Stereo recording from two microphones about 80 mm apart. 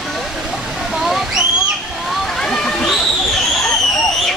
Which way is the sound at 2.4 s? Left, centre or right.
Centre.